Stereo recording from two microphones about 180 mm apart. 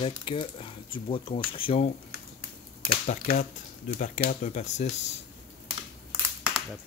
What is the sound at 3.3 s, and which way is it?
Speech, 45° left (ahead or behind).